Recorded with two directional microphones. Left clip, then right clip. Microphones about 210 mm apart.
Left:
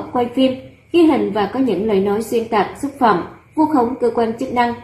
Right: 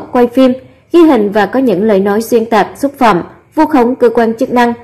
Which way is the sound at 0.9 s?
35° right (ahead or behind).